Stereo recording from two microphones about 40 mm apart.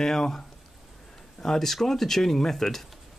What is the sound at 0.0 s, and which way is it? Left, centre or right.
Speech, centre.